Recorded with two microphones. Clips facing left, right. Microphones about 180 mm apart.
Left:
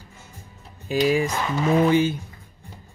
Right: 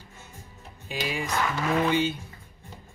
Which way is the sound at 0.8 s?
45° left (ahead or behind).